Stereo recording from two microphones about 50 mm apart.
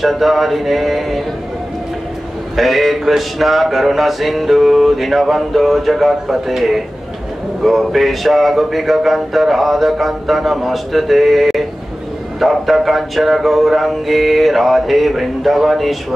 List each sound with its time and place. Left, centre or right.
0.0 s mantra: centre
2.5 s mantra: centre